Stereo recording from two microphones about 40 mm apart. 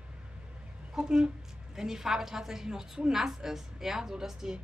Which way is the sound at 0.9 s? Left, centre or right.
Right.